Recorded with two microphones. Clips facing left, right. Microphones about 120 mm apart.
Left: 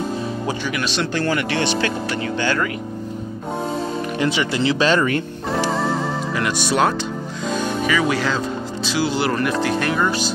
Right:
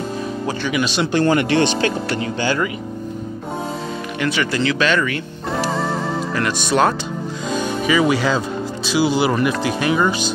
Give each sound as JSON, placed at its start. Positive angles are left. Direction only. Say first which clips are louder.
{"t": 0.7, "sound": "speech", "louder": "right 6 dB", "side_deg": -5}
{"t": 1.1, "sound": "speech", "louder": "right 7 dB", "side_deg": -25}
{"t": 2.4, "sound": "speech", "louder": "right 1 dB", "side_deg": -15}
{"t": 4.2, "sound": "speech", "louder": "right 1 dB", "side_deg": 25}
{"t": 4.7, "sound": "speech", "louder": "left 1 dB", "side_deg": 35}
{"t": 5.5, "sound": "music", "louder": "even", "side_deg": 0}
{"t": 6.4, "sound": "speech", "louder": "right 2 dB", "side_deg": 5}
{"t": 7.5, "sound": "music", "louder": "right 3 dB", "side_deg": -10}
{"t": 8.8, "sound": "speech", "louder": "right 4 dB", "side_deg": -5}